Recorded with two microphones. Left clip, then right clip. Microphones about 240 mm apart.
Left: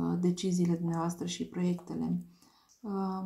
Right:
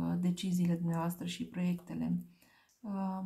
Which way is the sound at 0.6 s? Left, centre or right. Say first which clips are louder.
Left 4 dB; right.